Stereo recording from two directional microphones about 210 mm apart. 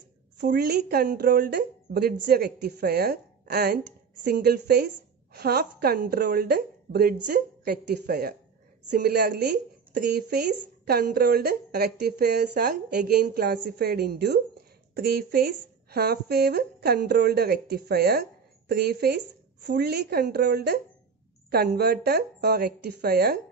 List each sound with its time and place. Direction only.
0.4 s a woman's voice: 55° right (ahead or behind)